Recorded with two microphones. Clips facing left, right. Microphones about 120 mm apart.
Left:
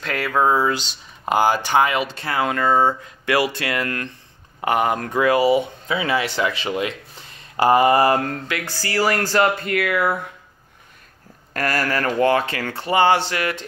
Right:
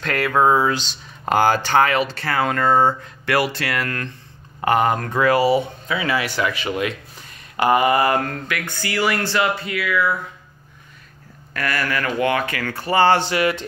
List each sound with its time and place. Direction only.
0.0 s speech: 5° left (ahead or behind)
0.3 s speech: 5° right (ahead or behind)
0.7 s speech: 10° left (ahead or behind)
2.4 s speech: 5° left (ahead or behind); by 10.3 s 55° left (ahead or behind)
11.5 s speech: 40° left (ahead or behind); by 13.1 s 20° left (ahead or behind)
13.1 s speech: centre (ahead or behind)